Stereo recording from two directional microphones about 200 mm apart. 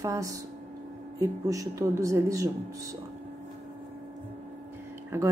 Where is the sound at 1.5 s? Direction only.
15° right (ahead or behind).